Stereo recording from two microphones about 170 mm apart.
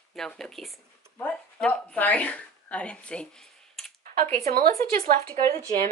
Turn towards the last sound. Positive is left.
turn(degrees=-55)  # may be behind; listen again after turning